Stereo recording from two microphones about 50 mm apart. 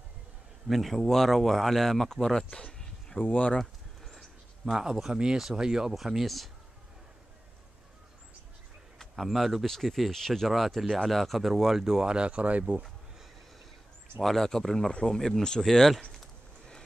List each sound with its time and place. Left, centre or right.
0.7 s speech: centre
3.2 s speech: left
3.5 s a sound: centre
4.6 s speech: centre
8.9 s speech: centre; by 12.8 s right
14.2 s speech: centre
14.9 s speech: left
15.1 s speech: centre